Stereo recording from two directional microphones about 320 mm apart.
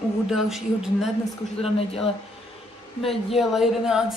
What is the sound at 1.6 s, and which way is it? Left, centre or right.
Speech, centre.